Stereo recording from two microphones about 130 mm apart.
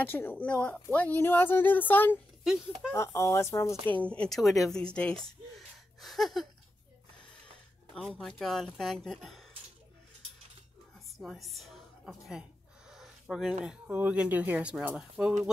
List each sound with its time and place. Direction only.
0.0 s speech: 15° left (ahead or behind)
3.8 s speech: 10° left (ahead or behind)
5.9 s a sound: centre (ahead or behind)
7.9 s speech: 5° left (ahead or behind)
11.1 s a woman's voice: centre (ahead or behind)
12.9 s a sound: centre (ahead or behind)
13.7 s speech: 10° right (ahead or behind)